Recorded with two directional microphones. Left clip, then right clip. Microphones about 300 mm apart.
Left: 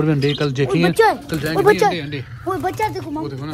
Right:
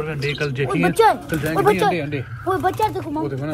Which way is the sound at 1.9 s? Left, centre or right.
Centre.